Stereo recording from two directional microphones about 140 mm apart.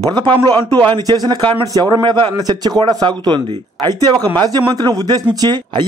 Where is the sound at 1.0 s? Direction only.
30° right (ahead or behind).